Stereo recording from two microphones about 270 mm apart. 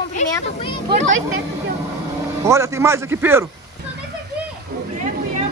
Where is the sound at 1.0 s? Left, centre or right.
Right.